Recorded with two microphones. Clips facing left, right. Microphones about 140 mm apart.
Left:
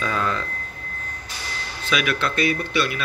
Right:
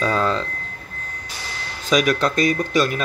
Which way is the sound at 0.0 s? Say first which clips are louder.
Right 4 dB; 30° right (ahead or behind).